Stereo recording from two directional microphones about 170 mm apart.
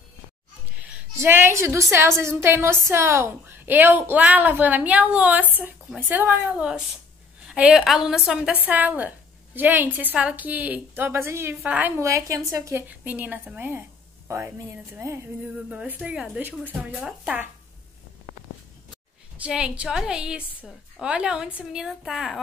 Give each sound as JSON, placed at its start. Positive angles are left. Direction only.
{"t": 0.7, "sound": "a woman's voice", "side_deg": -10}
{"t": 15.7, "sound": "a woman's voice", "side_deg": -5}
{"t": 19.3, "sound": "a woman's voice", "side_deg": -5}